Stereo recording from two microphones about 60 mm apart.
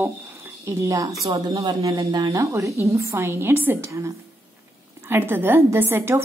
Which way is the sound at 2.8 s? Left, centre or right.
Right.